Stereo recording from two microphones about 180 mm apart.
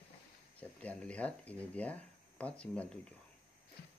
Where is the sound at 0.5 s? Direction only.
5° left (ahead or behind).